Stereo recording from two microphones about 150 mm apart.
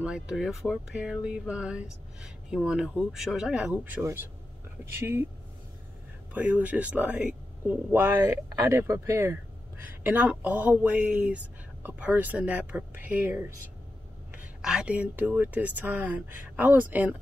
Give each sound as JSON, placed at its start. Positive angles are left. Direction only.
{"t": 0.0, "sound": "speech", "side_deg": -5}
{"t": 6.3, "sound": "speech", "side_deg": -10}